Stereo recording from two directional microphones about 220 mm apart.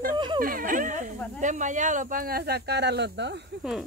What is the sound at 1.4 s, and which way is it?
Speech, 35° right (ahead or behind).